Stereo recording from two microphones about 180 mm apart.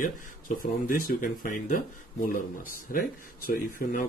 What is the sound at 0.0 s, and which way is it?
Speech, 50° left (ahead or behind).